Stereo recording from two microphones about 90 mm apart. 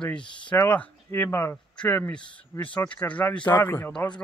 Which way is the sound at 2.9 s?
15° left (ahead or behind).